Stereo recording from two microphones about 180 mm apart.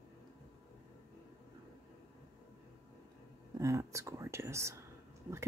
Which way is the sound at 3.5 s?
15° right (ahead or behind).